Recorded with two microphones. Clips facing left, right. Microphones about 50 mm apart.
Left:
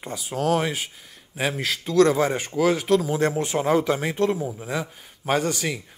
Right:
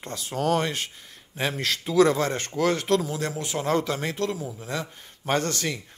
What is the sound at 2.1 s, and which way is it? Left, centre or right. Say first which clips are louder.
Speech: left 4 dB; centre.